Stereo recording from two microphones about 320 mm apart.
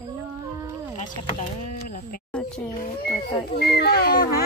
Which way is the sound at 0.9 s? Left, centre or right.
Left.